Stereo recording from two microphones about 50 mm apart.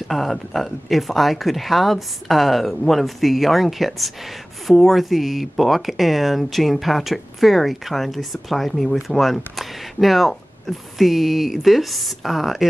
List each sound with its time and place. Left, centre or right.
0.1 s speech: centre